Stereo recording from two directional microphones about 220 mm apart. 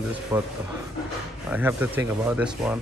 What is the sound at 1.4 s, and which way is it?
Speech, 10° right (ahead or behind).